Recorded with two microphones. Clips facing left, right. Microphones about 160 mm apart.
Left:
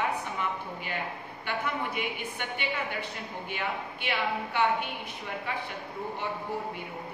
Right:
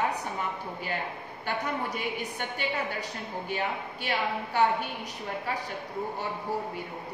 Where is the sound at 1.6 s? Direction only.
40° right (ahead or behind).